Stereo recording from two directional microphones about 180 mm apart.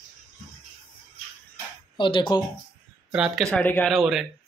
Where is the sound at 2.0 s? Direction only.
25° left (ahead or behind).